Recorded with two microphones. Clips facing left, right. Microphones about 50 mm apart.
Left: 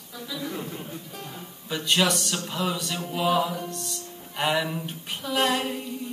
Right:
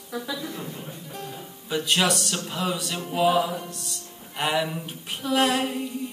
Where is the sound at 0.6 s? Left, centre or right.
Centre.